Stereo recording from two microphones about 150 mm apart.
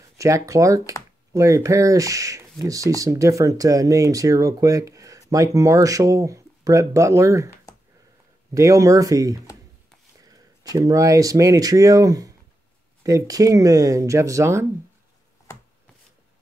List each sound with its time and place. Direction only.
0.2 s speech: 20° right (ahead or behind)
8.5 s speech: 20° right (ahead or behind)